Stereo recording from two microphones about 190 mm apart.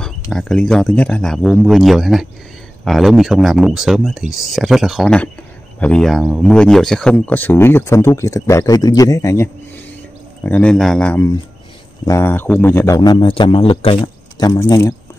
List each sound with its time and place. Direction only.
0.0 s speech: 5° left (ahead or behind)